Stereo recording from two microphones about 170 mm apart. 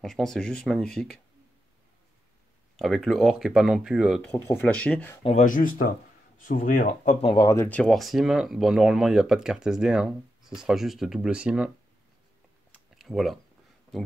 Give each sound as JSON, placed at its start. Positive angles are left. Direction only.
{"t": 0.0, "sound": "speech", "side_deg": 5}
{"t": 2.8, "sound": "speech", "side_deg": 0}
{"t": 4.5, "sound": "speech", "side_deg": 10}
{"t": 5.2, "sound": "speech", "side_deg": 45}
{"t": 7.2, "sound": "speech", "side_deg": 20}
{"t": 12.9, "sound": "a sound", "side_deg": 0}